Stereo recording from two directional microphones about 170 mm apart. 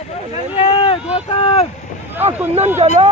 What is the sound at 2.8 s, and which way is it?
Speech, 30° right (ahead or behind).